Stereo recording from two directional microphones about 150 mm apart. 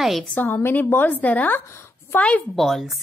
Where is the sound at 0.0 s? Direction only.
Centre (ahead or behind).